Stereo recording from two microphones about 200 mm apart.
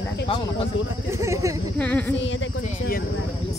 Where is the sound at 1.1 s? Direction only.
15° right (ahead or behind).